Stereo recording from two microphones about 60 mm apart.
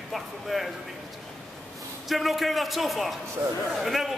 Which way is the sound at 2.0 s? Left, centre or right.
Centre.